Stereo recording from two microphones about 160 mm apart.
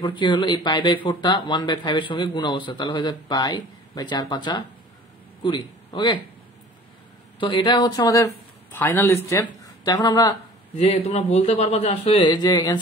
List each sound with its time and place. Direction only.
0.0 s a man's voice: 30° left (ahead or behind)
7.3 s speech: 30° left (ahead or behind)
8.7 s speech: 10° left (ahead or behind)
10.8 s a man's voice: 40° left (ahead or behind)